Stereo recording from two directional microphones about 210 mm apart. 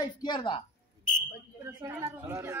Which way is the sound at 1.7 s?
15° right (ahead or behind).